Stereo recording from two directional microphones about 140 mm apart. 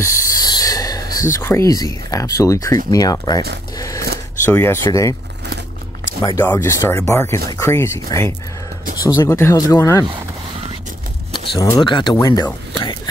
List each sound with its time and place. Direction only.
0.0 s speech: 20° left (ahead or behind)
6.4 s speech: 15° left (ahead or behind)
11.3 s speech: 35° left (ahead or behind)